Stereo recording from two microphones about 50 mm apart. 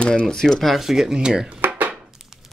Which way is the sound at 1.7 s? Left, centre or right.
Right.